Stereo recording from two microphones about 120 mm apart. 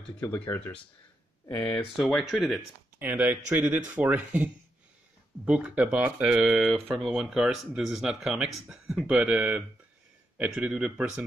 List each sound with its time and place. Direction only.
0.0 s speech: 15° left (ahead or behind)
3.0 s speech: 15° right (ahead or behind)